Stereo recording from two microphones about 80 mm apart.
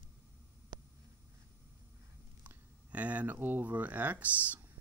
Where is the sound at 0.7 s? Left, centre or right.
Right.